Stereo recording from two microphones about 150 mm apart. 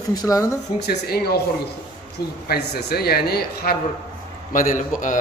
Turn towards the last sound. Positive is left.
turn(degrees=60)  # may be behind; listen again after turning